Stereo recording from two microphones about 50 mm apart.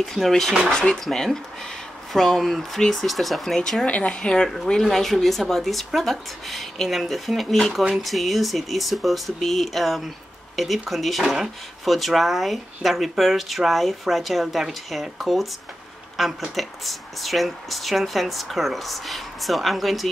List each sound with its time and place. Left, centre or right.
0.0 s speech: centre
3.5 s speech: centre
3.8 s speech: left; by 20.1 s centre